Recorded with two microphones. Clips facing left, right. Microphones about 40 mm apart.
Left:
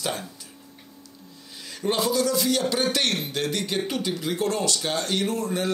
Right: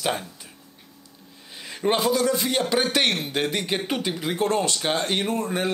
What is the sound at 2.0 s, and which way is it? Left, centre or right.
A man's voice, right.